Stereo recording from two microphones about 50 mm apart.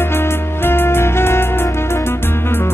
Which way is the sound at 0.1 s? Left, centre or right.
Left.